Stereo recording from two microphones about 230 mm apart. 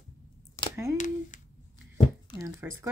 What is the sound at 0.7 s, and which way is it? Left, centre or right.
Speech, centre.